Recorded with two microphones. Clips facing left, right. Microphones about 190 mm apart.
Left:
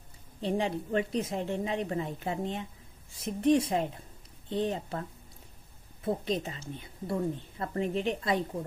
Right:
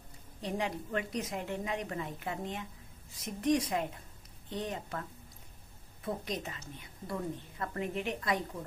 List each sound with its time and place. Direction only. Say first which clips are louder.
0.4 s a woman's voice: left 5 dB; 30° left (ahead or behind)
6.0 s a woman's voice: left 6 dB; 30° left (ahead or behind)